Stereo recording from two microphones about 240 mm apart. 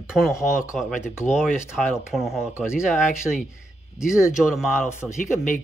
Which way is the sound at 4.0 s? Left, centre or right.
Centre.